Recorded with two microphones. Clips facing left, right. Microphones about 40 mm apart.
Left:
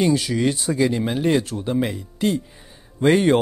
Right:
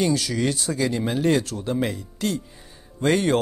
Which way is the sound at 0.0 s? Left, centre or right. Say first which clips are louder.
Left 3 dB; centre.